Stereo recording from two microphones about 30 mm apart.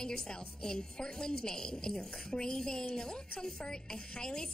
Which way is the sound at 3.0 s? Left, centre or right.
Left.